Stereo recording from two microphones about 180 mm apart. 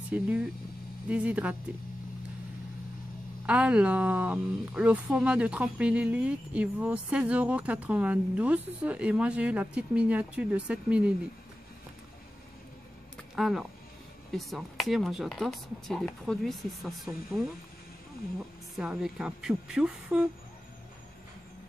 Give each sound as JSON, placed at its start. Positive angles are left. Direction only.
{"t": 0.1, "sound": "speech", "side_deg": -5}
{"t": 3.4, "sound": "speech", "side_deg": -5}
{"t": 13.4, "sound": "speech", "side_deg": 0}
{"t": 18.8, "sound": "speech", "side_deg": -5}